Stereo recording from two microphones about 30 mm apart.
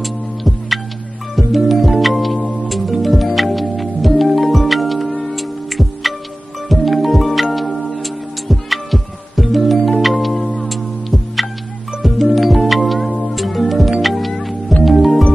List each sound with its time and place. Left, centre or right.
0.0 s music: centre
14.3 s music: centre